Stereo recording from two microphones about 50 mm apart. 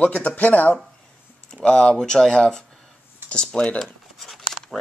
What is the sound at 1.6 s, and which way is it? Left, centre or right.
Speech, left.